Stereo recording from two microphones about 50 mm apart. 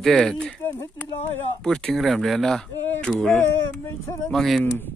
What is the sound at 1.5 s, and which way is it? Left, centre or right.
Speech, centre.